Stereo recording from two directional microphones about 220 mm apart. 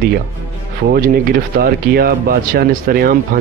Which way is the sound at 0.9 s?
40° right (ahead or behind).